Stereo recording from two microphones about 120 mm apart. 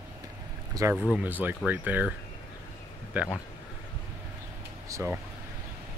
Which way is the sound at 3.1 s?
10° right (ahead or behind).